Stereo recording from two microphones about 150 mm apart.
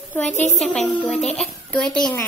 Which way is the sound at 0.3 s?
50° left (ahead or behind).